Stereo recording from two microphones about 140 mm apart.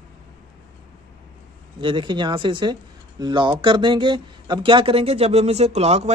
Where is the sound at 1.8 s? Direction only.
35° right (ahead or behind).